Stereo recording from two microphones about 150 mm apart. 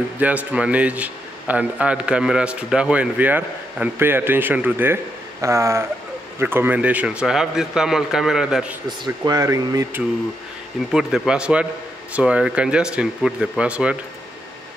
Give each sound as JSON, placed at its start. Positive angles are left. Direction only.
{"t": 0.2, "sound": "a man's voice", "side_deg": -10}
{"t": 8.8, "sound": "speech", "side_deg": -30}
{"t": 10.9, "sound": "a man's voice", "side_deg": -5}